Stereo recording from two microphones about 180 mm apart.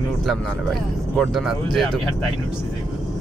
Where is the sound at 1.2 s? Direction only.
Centre (ahead or behind).